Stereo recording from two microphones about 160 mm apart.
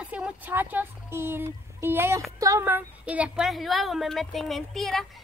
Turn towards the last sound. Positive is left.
turn(degrees=0)  # may be behind; listen again after turning